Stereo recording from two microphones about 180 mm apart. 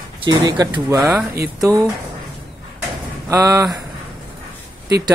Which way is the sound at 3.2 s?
20° right (ahead or behind).